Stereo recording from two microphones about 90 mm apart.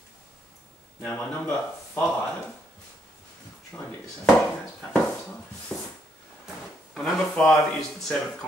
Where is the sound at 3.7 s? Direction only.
20° left (ahead or behind).